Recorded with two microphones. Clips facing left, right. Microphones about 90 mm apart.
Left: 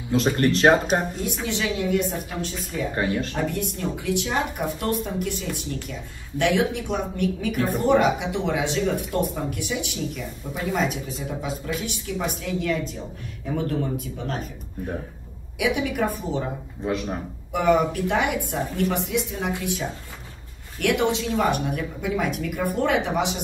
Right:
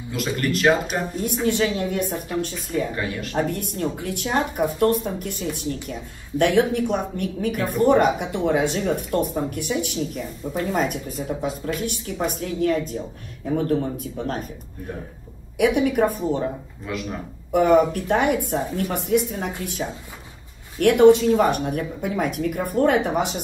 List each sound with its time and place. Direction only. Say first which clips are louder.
0.1 s speech: left 4 dB; 30° left (ahead or behind)
1.4 s speech: right 5 dB; 50° right (ahead or behind)
15.5 s speech: right 5 dB; 50° right (ahead or behind)
16.8 s speech: left 4 dB; 25° left (ahead or behind)
17.5 s speech: right 4 dB; 45° right (ahead or behind)
20.8 s speech: right 9 dB; 50° right (ahead or behind)